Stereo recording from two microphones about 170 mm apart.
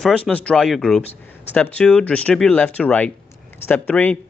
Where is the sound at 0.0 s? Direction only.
5° left (ahead or behind).